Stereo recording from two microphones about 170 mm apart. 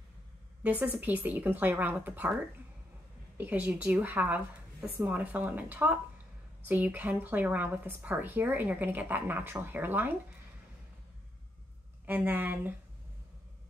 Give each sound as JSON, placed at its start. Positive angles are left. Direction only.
{"t": 0.7, "sound": "speech", "side_deg": -10}
{"t": 3.3, "sound": "speech", "side_deg": -10}
{"t": 12.1, "sound": "speech", "side_deg": -10}